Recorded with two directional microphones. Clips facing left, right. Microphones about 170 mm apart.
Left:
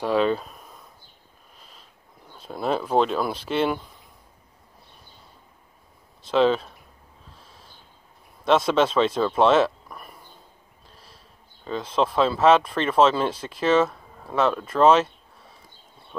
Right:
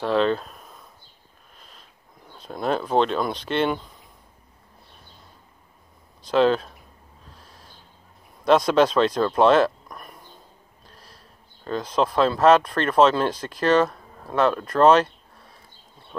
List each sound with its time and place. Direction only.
0.0 s speech: 10° left (ahead or behind)
2.3 s speech: 5° left (ahead or behind)
6.2 s speech: 5° right (ahead or behind)
8.5 s speech: centre (ahead or behind)
10.9 s a sound: 5° left (ahead or behind)
11.6 s speech: 5° left (ahead or behind)